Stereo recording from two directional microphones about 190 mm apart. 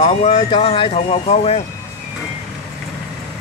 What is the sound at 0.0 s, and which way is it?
Speech, 35° left (ahead or behind).